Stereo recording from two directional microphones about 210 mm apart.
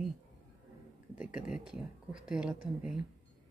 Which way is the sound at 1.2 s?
5° right (ahead or behind).